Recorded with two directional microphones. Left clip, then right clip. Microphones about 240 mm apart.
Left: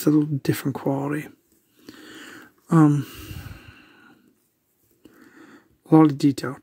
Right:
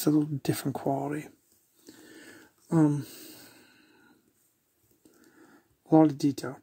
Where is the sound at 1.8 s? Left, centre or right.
Left.